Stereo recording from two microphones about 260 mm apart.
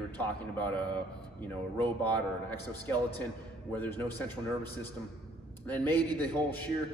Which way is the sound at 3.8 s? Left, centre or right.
Centre.